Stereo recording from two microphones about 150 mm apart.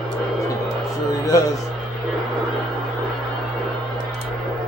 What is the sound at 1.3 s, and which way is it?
Speech, 20° left (ahead or behind).